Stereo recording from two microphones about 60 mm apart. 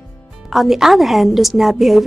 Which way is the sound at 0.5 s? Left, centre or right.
Centre.